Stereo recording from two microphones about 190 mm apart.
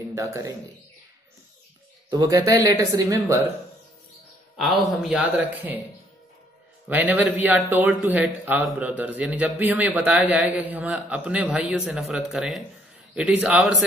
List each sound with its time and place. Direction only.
0.1 s a man's voice: 15° right (ahead or behind)
2.3 s a man's voice: 20° right (ahead or behind)
4.6 s a man's voice: centre (ahead or behind)
6.9 s a man's voice: 10° right (ahead or behind)